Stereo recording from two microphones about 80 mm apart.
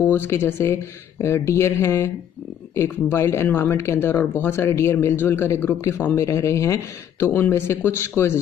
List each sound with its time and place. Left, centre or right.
0.0 s speech: left